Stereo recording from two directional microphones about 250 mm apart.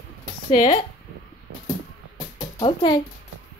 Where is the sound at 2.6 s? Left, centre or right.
Centre.